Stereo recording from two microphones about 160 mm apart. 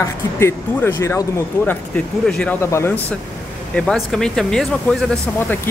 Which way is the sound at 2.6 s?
15° left (ahead or behind).